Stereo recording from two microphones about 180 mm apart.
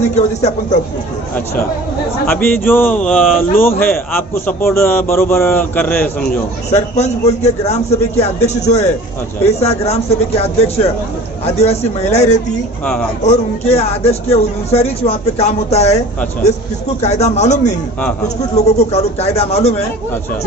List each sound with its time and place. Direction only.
0.1 s speech: 40° left (ahead or behind)
2.2 s a man's voice: 10° left (ahead or behind)
6.7 s speech: 40° left (ahead or behind)
17.0 s speech: 35° left (ahead or behind)